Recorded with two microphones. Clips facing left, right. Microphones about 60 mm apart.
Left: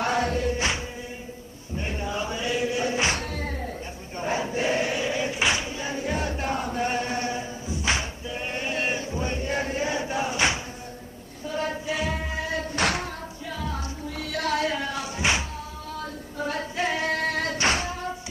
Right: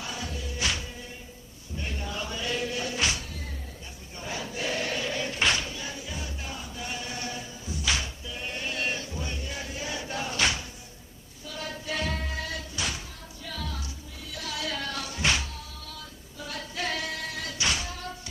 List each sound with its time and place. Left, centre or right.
0.0 s music: left
1.8 s chant: left
3.1 s music: left
4.2 s choir: left
5.9 s chant: left
11.4 s a sound: left
11.9 s music: centre
12.7 s music: left
13.5 s music: centre
14.2 s a sound: left
14.7 s a sound: centre
16.3 s singing: left
16.7 s singing: left
17.0 s music: left